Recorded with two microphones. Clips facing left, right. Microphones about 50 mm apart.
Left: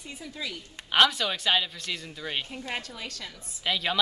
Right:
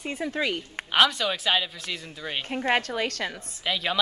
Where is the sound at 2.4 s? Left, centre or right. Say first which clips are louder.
Right 10 dB; right.